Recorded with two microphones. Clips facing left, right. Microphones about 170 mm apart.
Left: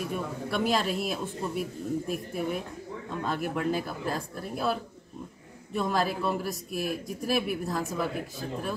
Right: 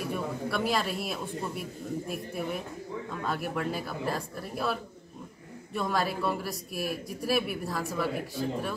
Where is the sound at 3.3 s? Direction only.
Centre (ahead or behind).